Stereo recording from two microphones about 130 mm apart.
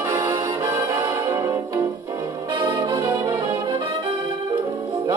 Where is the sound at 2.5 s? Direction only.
30° right (ahead or behind).